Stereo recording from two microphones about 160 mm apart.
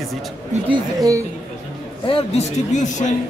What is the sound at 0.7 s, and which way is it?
Speech, 20° right (ahead or behind).